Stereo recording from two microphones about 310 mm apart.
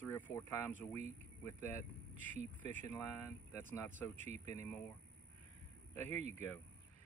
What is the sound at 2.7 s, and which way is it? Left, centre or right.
Speech, centre.